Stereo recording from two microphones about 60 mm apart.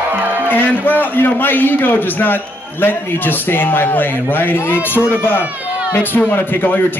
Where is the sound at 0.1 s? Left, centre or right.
Right.